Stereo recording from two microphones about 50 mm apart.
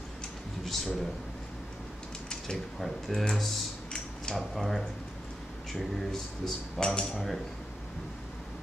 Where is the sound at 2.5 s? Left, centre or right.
Centre.